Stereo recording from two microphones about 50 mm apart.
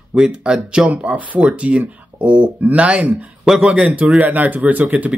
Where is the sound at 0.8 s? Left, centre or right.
Right.